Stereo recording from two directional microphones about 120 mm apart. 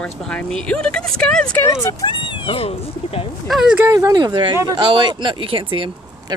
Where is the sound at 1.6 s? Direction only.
25° left (ahead or behind).